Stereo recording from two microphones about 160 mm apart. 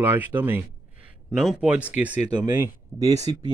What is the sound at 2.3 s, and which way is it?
Speech, 25° right (ahead or behind).